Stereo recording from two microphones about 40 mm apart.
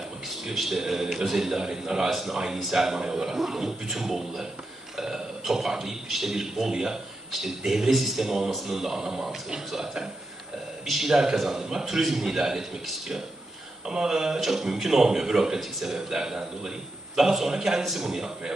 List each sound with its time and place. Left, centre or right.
0.5 s a man's voice: centre
2.0 s a man's voice: centre